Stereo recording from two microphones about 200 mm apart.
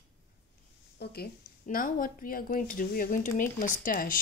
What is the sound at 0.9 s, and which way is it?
Speech, 50° left (ahead or behind).